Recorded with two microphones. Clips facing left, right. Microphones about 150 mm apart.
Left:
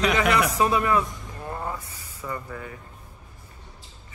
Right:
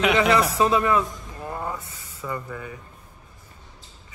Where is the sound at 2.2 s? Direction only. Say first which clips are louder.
Right 2 dB; 10° left (ahead or behind).